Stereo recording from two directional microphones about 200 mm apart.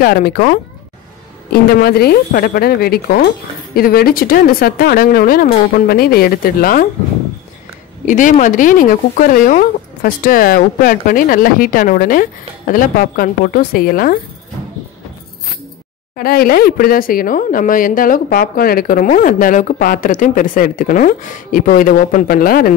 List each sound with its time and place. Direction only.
0.0 s speech: 45° left (ahead or behind)
8.0 s speech: 40° left (ahead or behind)
16.2 s speech: 50° left (ahead or behind)